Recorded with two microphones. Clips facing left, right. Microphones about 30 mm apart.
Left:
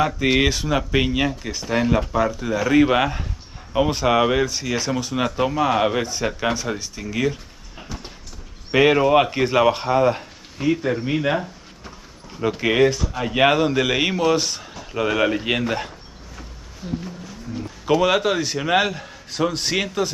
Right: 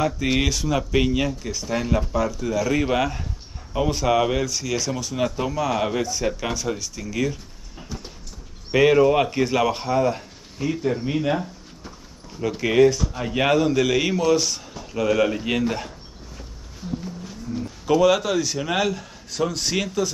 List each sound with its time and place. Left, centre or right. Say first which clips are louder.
0.0 s speech: left 3 dB; left
8.7 s speech: left 1 dB; left
16.8 s a sound: left 2 dB; centre
17.6 s a man's voice: even; left